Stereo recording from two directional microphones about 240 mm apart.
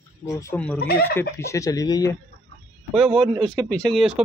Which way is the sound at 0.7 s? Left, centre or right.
Left.